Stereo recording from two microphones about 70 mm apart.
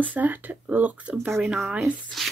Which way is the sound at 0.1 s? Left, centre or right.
Right.